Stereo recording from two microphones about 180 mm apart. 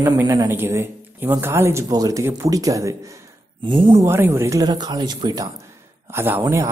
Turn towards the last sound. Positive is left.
turn(degrees=-15)  # may be behind; listen again after turning